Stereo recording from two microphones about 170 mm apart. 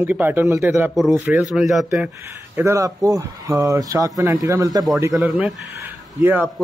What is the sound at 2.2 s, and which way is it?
A man's voice, 15° right (ahead or behind).